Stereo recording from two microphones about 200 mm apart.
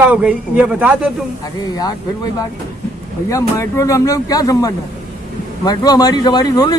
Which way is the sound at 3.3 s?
15° left (ahead or behind).